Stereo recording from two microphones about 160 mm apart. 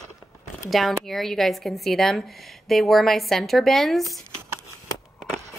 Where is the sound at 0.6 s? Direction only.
Centre (ahead or behind).